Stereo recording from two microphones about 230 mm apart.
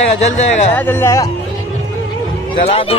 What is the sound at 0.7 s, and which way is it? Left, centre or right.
Speech, centre.